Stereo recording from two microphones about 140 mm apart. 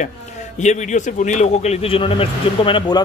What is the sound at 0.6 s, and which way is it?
Speech, 60° left (ahead or behind).